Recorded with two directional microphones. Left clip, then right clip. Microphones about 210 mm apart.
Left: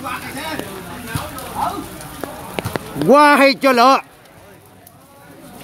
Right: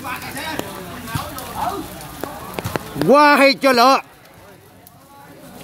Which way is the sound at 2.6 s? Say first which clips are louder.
Left 3 dB; 5° left (ahead or behind).